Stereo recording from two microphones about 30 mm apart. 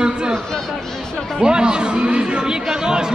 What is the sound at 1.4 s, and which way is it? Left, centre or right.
A woman's voice, right.